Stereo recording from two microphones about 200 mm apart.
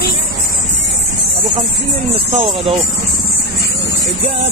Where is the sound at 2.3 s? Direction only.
30° right (ahead or behind).